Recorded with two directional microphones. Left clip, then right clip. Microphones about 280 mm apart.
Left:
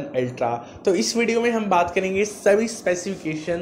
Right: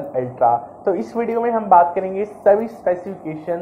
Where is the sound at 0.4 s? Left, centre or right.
Left.